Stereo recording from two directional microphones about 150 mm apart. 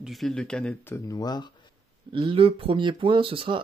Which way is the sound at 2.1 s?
35° right (ahead or behind).